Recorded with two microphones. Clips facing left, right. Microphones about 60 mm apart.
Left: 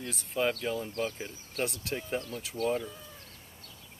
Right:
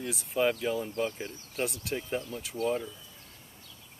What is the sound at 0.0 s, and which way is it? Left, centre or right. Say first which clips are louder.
Speech: right 2 dB; centre.